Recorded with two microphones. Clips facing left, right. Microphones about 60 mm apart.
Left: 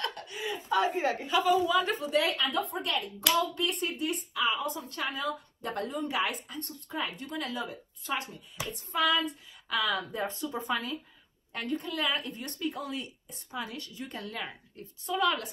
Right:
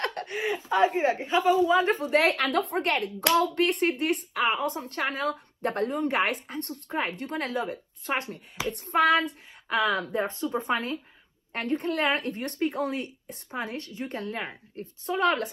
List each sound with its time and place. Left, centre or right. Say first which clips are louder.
0.0 s chuckle: right 6 dB; right
0.7 s a woman's voice: right 4 dB; right
1.0 s a woman's voice: right 4 dB; right
9.7 s a woman's voice: right 5 dB; right